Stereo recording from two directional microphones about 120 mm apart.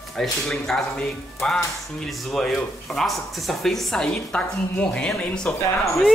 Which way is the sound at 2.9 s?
Centre (ahead or behind).